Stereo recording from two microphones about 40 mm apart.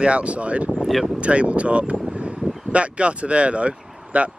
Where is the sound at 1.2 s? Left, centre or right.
Right.